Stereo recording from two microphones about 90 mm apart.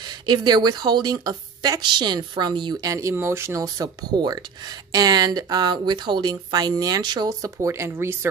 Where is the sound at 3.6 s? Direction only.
45° right (ahead or behind).